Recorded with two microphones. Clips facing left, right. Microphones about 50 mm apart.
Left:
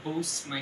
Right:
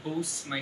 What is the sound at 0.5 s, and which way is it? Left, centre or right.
Speech, centre.